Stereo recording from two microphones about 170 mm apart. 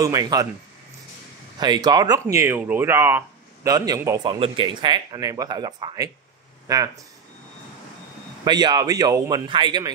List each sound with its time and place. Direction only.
0.0 s speech: 20° right (ahead or behind)
1.6 s speech: 25° right (ahead or behind)
8.5 s speech: 25° right (ahead or behind)